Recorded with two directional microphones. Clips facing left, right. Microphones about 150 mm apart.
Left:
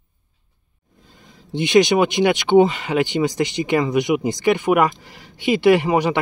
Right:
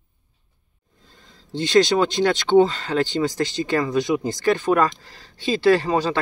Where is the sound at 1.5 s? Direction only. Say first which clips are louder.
Left 2 dB; 15° left (ahead or behind).